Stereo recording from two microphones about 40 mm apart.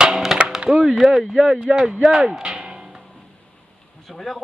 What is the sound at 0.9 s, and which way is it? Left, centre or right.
Speech, centre.